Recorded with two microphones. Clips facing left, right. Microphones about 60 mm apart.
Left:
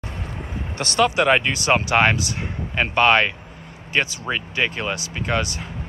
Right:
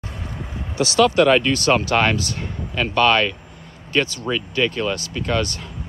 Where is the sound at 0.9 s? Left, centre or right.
Centre.